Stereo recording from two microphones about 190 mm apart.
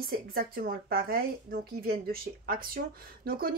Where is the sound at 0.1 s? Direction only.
50° right (ahead or behind).